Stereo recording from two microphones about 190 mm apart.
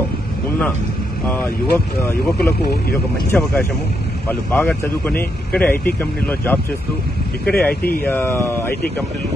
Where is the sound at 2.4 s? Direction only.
55° left (ahead or behind).